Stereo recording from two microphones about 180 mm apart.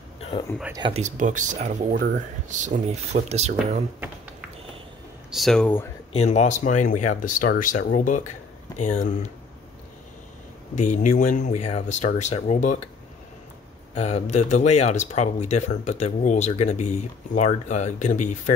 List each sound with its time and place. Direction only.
0.7 s speech: 25° right (ahead or behind)
1.0 s speech: 45° right (ahead or behind)
5.3 s speech: centre (ahead or behind)
6.1 s speech: 40° left (ahead or behind)
10.8 s speech: 40° left (ahead or behind)
13.9 s speech: 35° left (ahead or behind)